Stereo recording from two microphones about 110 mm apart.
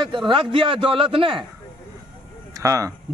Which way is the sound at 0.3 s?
50° right (ahead or behind).